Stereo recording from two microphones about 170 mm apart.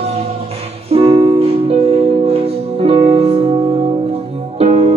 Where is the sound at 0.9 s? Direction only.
35° right (ahead or behind).